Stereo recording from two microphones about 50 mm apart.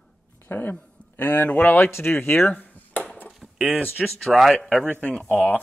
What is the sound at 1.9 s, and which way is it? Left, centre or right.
Speech, left.